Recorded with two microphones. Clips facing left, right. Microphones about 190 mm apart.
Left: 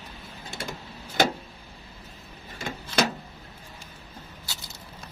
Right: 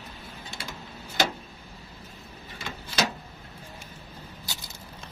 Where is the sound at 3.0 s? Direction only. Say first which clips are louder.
Left 3 dB; 55° left (ahead or behind).